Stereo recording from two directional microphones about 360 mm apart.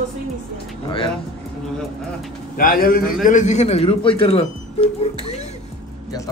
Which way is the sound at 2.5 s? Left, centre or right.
Left.